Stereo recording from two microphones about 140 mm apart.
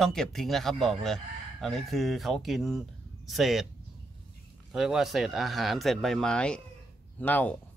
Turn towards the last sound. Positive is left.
turn(degrees=10)  # may be behind; listen again after turning